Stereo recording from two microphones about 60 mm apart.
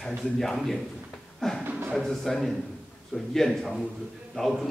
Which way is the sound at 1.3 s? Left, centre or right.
Centre.